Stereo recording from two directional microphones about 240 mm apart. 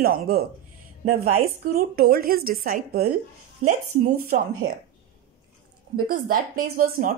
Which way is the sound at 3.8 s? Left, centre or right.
Right.